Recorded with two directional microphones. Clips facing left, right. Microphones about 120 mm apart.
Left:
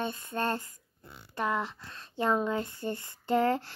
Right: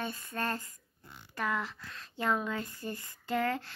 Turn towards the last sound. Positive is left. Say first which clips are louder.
# left 5 dB
turn(degrees=30)  # may be behind; listen again after turning